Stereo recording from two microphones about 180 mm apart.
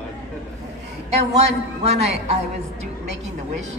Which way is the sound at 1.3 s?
35° right (ahead or behind).